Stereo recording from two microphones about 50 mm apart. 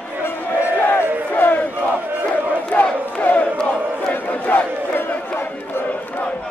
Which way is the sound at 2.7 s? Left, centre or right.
Left.